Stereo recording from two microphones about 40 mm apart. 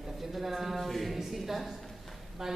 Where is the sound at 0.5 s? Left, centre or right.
Centre.